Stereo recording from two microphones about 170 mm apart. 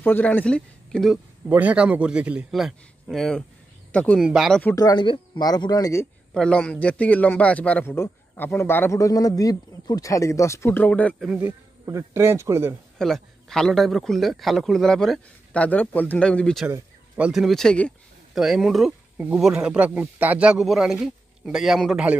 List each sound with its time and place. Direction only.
0.0 s speech: 10° left (ahead or behind)
1.5 s a man's voice: 10° right (ahead or behind); by 4.2 s 10° left (ahead or behind)
4.2 s a man's voice: 5° right (ahead or behind)
4.7 s speech: 25° left (ahead or behind)
6.3 s a man's voice: 5° left (ahead or behind)
11.2 s a man's voice: 10° right (ahead or behind)
13.0 s a man's voice: centre (ahead or behind)
16.6 s speech: 10° right (ahead or behind)